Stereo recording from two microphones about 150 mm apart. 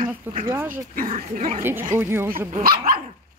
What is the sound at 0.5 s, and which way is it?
Speech, 15° right (ahead or behind).